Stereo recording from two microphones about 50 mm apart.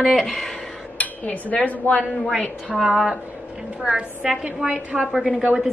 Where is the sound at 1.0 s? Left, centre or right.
Left.